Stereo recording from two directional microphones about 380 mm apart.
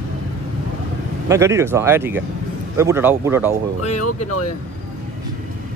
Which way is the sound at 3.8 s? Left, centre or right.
Left.